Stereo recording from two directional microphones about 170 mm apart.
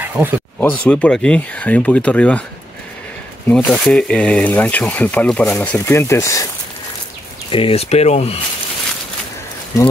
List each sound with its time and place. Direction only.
0.0 s a sound: 10° right (ahead or behind)
0.6 s speech: 5° left (ahead or behind)
3.4 s speech: 5° left (ahead or behind)
7.5 s speech: 35° left (ahead or behind)